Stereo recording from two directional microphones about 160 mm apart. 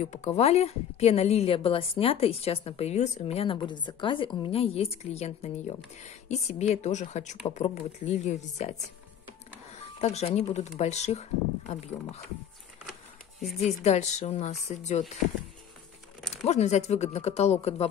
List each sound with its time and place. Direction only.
0.0 s a woman's voice: 45° left (ahead or behind)
9.9 s a woman's voice: 40° left (ahead or behind)
13.6 s a woman's voice: 45° left (ahead or behind)
16.4 s a woman's voice: 45° left (ahead or behind)